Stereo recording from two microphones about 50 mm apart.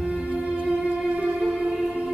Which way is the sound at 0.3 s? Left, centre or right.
Right.